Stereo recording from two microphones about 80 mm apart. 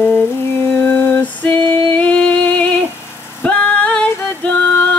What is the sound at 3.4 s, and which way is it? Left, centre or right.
Music, centre.